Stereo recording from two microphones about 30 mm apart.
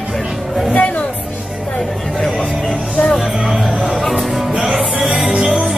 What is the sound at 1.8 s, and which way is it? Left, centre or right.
Music, centre.